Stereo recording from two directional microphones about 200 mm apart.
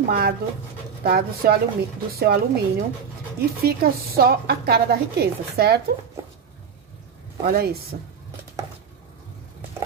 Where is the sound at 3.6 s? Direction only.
50° right (ahead or behind).